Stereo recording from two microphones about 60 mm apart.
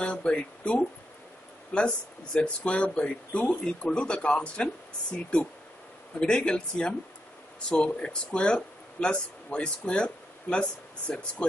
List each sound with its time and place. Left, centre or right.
0.0 s speech: centre